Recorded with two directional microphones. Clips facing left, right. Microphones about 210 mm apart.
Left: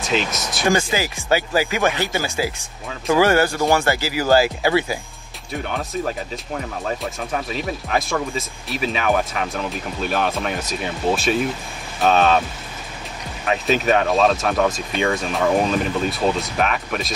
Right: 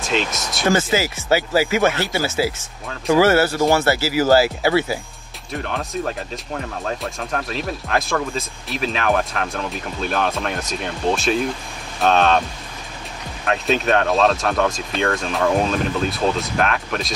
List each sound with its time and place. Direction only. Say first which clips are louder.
0.0 s speech: even; centre (ahead or behind)
0.9 s speech: right 2 dB; 15° left (ahead or behind)
5.5 s speech: even; centre (ahead or behind)
13.5 s speech: even; centre (ahead or behind)